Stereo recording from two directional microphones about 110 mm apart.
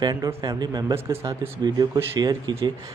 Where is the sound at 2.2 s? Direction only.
40° right (ahead or behind).